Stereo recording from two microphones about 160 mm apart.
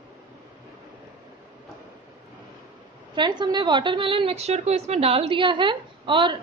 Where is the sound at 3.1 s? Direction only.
30° right (ahead or behind).